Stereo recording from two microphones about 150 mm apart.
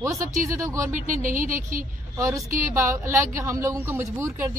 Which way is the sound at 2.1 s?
20° right (ahead or behind).